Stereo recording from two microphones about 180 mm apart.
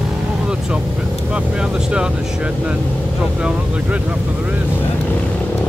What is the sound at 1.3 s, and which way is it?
Vehicle, 5° right (ahead or behind).